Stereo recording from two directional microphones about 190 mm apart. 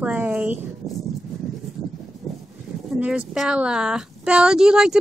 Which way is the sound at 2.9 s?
5° right (ahead or behind).